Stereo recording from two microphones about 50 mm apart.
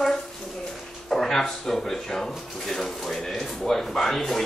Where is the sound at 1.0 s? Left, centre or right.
Centre.